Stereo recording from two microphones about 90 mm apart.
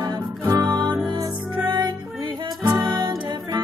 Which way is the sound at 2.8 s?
55° right (ahead or behind).